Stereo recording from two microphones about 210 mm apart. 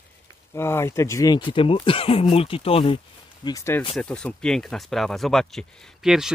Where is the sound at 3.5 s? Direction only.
15° left (ahead or behind); by 6.3 s centre (ahead or behind).